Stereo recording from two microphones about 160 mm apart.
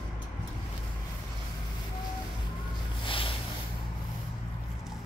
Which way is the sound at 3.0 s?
35° left (ahead or behind).